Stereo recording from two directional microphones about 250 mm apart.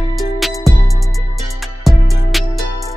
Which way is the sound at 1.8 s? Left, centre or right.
Centre.